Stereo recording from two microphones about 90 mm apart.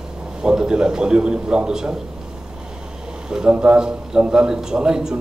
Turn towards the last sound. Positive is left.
turn(degrees=-10)  # may be behind; listen again after turning